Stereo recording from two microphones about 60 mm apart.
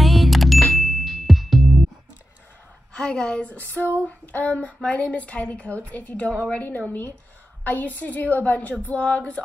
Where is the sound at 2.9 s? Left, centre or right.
Centre.